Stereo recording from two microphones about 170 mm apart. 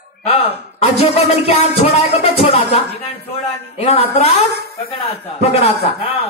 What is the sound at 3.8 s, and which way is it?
Speech, 40° left (ahead or behind).